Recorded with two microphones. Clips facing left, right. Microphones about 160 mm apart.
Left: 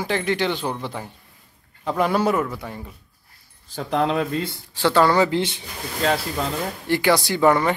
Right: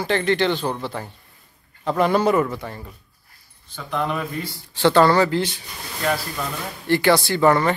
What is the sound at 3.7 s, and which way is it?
Speech, 35° left (ahead or behind).